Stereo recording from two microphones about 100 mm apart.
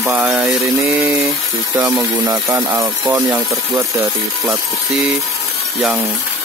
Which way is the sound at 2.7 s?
25° right (ahead or behind).